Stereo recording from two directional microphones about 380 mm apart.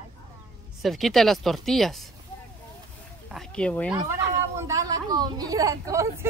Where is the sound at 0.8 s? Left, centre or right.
Centre.